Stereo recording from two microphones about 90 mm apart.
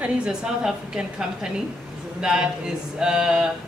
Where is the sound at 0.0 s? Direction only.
10° right (ahead or behind).